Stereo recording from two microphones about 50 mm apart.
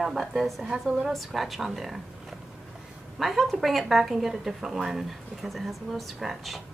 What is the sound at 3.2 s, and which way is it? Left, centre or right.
Speech, centre.